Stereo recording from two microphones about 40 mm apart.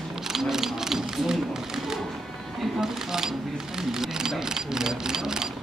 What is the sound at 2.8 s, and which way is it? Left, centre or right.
Shuffling cards, centre.